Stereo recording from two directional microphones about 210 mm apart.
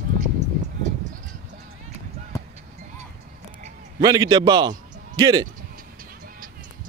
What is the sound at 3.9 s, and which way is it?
A man's voice, 20° right (ahead or behind).